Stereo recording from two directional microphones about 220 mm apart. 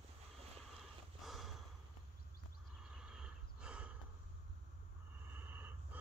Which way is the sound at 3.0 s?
5° right (ahead or behind).